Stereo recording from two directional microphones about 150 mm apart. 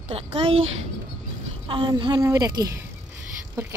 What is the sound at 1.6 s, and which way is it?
Speech, 35° right (ahead or behind).